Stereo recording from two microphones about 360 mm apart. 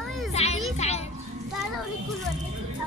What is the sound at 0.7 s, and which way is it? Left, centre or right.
Speech, centre.